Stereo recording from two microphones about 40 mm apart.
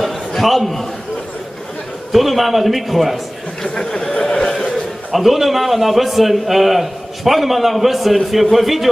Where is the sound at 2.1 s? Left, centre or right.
Centre.